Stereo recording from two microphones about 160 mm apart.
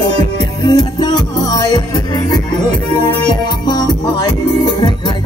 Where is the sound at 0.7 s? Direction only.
25° left (ahead or behind).